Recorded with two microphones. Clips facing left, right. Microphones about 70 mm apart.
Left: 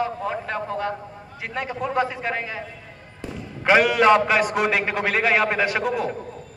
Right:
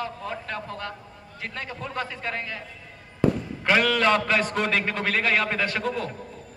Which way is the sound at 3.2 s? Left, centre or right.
Right.